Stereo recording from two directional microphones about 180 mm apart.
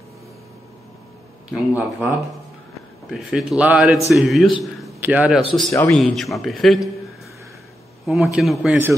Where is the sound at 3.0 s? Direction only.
Centre (ahead or behind).